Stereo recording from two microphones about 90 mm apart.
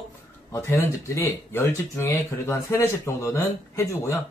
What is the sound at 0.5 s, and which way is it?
A man's voice, 30° left (ahead or behind).